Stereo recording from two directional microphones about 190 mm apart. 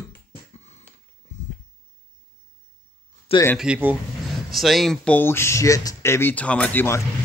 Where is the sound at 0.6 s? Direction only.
35° left (ahead or behind).